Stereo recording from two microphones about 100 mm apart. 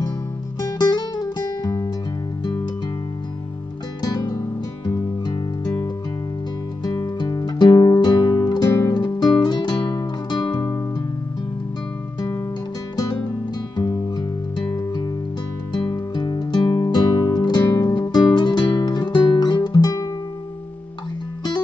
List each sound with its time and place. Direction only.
0.6 s music: 40° left (ahead or behind)
4.0 s music: 40° left (ahead or behind)
6.8 s music: 40° left (ahead or behind)
13.7 s music: 45° left (ahead or behind)
15.7 s music: 45° left (ahead or behind)